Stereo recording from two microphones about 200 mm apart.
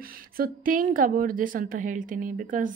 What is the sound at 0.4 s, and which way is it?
A woman's voice, 45° right (ahead or behind).